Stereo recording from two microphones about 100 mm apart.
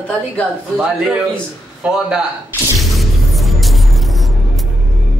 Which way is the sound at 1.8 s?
10° right (ahead or behind).